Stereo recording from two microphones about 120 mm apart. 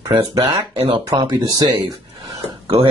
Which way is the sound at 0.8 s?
50° right (ahead or behind).